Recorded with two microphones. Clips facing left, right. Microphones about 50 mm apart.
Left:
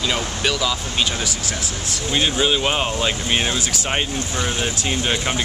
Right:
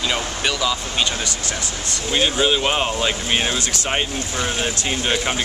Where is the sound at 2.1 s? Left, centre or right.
Centre.